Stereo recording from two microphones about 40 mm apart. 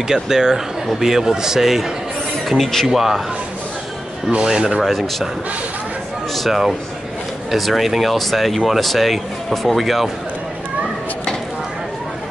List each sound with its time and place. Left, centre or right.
0.1 s a man's voice: centre
2.5 s speech: centre
2.9 s a man's voice: centre
4.4 s rub: centre
4.8 s speech: centre
7.5 s speech: centre